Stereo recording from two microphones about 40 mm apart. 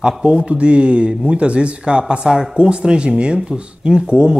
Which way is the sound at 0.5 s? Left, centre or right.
Right.